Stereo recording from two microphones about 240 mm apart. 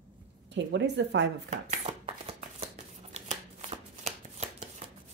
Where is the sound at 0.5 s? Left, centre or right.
Right.